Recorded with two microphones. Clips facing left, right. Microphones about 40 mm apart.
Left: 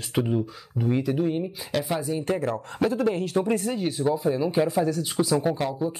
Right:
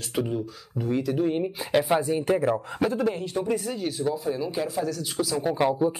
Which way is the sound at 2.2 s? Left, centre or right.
Centre.